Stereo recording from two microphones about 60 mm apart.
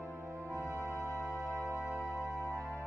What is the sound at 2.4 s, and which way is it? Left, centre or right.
Music, left.